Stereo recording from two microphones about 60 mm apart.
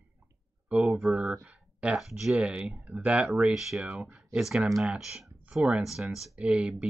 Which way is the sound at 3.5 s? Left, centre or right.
Centre.